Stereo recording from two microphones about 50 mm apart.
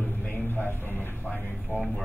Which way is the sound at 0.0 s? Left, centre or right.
Left.